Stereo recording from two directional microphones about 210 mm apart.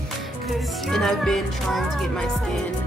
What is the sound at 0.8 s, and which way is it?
Speech, centre (ahead or behind).